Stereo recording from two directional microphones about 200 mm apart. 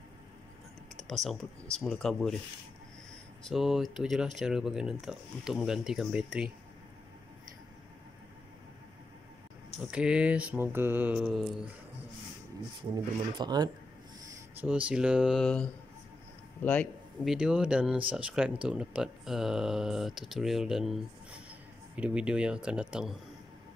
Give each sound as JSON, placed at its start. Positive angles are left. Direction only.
{"t": 0.9, "sound": "speech", "side_deg": 0}
{"t": 3.4, "sound": "speech", "side_deg": 0}
{"t": 9.8, "sound": "mantra", "side_deg": -5}
{"t": 12.9, "sound": "speech", "side_deg": -20}
{"t": 14.6, "sound": "speech", "side_deg": -5}